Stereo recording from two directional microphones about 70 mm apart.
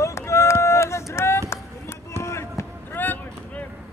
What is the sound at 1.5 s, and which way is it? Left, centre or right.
Run, left.